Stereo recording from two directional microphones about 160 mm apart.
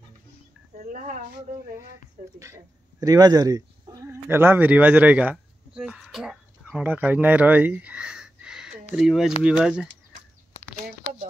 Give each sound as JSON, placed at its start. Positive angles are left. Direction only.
{"t": 0.7, "sound": "speech", "side_deg": -50}
{"t": 2.3, "sound": "speech", "side_deg": -20}